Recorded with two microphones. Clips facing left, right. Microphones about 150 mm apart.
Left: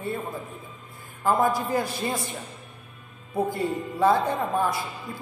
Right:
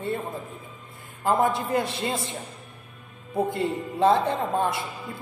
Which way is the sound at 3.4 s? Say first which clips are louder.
Even; 25° right (ahead or behind).